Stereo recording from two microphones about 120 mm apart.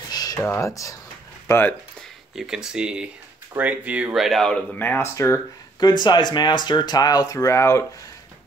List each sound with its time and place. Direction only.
0.1 s a sound: 35° left (ahead or behind)
1.5 s speech: 20° left (ahead or behind)
2.0 s speech: 5° right (ahead or behind); by 5.9 s 25° left (ahead or behind)
5.9 s speech: 40° left (ahead or behind); by 7.8 s 25° left (ahead or behind)